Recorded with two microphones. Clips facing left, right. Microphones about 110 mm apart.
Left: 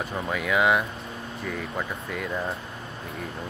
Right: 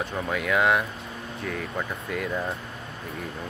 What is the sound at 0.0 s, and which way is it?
Speech, centre (ahead or behind).